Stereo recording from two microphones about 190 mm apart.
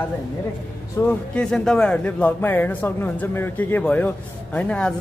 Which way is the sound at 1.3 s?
5° left (ahead or behind).